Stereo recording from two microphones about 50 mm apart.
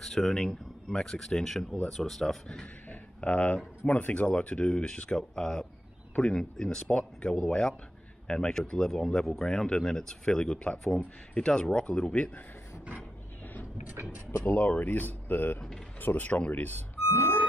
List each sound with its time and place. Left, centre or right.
0.0 s speech: centre
2.9 s speech: left; by 6.8 s centre
6.8 s speech: left
14.4 s speech: left
16.7 s speech: left